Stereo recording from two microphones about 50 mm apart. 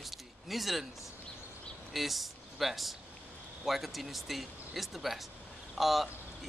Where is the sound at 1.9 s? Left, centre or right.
Centre.